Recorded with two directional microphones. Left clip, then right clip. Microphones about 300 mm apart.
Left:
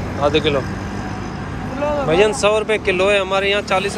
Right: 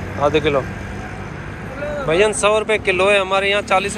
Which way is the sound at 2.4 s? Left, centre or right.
Centre.